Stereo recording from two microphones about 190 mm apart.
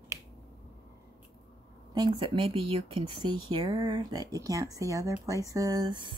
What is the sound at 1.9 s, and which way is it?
Speech, 25° right (ahead or behind).